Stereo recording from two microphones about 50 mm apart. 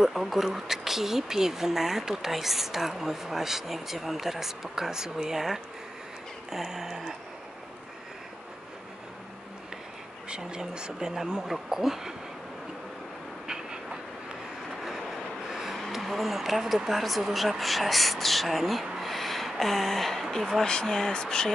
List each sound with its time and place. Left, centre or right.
0.0 s speech: centre
10.3 s speech: centre
13.5 s train: centre
14.8 s vehicle: centre
15.8 s speech: centre
20.6 s speech: centre